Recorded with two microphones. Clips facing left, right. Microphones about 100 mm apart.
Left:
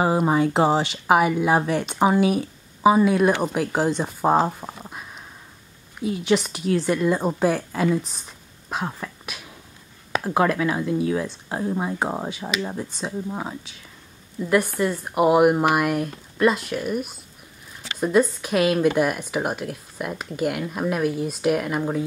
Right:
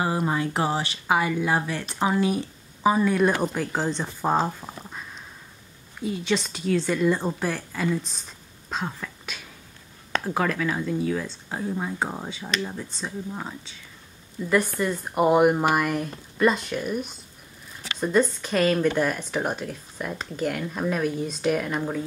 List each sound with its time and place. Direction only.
0.0 s speech: 20° left (ahead or behind)
6.2 s speech: 15° left (ahead or behind)
10.2 s speech: 20° left (ahead or behind)